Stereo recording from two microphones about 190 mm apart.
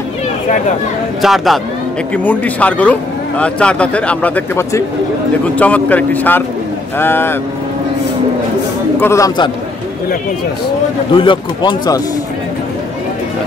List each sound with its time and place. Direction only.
1.2 s a man's voice: centre (ahead or behind)
9.0 s a man's voice: 15° left (ahead or behind)
11.1 s speech: 25° left (ahead or behind)